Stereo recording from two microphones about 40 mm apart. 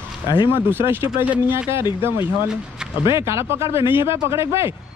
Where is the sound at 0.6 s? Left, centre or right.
Right.